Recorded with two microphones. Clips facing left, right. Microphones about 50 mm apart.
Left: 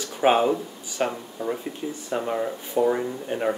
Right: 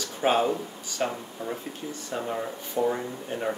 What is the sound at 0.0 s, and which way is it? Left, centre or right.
Speech, centre.